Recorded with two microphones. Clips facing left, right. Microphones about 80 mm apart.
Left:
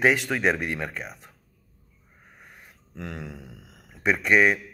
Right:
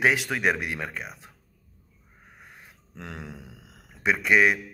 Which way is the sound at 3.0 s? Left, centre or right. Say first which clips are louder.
Left 3 dB; right.